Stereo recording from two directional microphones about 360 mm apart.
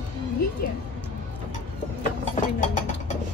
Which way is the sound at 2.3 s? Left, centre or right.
Centre.